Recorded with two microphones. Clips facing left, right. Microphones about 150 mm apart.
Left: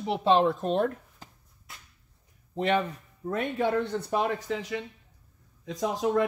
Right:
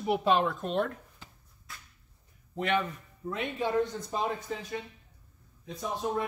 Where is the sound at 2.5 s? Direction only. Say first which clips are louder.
Left 3 dB; 35° left (ahead or behind); by 4.3 s 70° left (ahead or behind).